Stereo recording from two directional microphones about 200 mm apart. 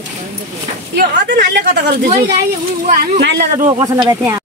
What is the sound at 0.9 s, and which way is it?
Speech, 55° right (ahead or behind).